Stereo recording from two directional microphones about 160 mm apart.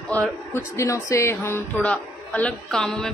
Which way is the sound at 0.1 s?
10° left (ahead or behind).